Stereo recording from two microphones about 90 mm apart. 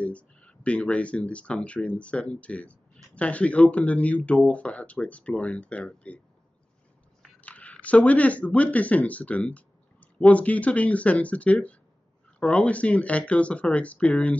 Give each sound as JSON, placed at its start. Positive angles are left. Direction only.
{"t": 0.0, "sound": "speech", "side_deg": 15}
{"t": 7.4, "sound": "speech", "side_deg": 15}